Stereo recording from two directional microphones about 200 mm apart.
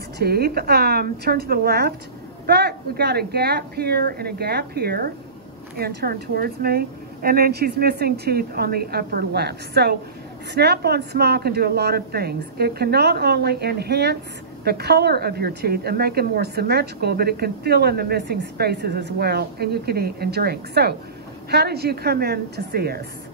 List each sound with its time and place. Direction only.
0.2 s a woman's voice: 50° right (ahead or behind)